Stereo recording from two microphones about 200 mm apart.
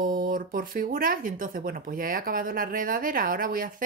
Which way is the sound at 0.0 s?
45° right (ahead or behind).